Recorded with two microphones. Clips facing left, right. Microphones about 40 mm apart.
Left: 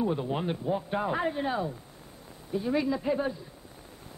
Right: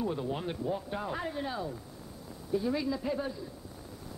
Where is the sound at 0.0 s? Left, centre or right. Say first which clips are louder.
Left 4 dB; left.